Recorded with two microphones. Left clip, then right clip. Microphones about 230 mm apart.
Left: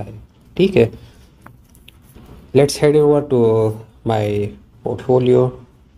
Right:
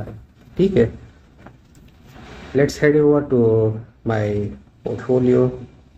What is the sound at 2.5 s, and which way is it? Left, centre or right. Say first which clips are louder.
Speech: left 3 dB; centre.